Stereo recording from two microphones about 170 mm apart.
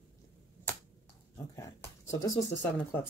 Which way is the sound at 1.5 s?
20° left (ahead or behind).